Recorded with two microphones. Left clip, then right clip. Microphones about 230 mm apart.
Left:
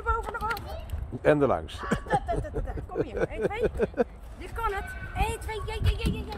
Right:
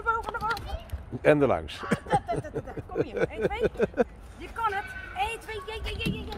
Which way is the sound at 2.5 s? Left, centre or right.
Centre.